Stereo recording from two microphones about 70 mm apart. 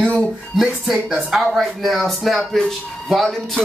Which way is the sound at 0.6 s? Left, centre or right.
Centre.